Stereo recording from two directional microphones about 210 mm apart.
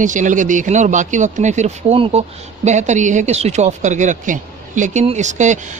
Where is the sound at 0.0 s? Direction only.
35° right (ahead or behind).